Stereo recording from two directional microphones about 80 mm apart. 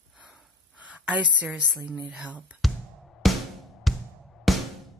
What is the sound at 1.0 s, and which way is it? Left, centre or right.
Speech, centre.